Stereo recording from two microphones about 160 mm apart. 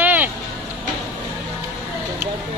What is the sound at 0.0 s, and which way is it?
Vehicle, 10° right (ahead or behind).